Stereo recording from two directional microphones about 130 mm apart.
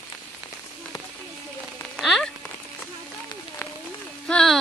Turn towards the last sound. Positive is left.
turn(degrees=5)  # may be behind; listen again after turning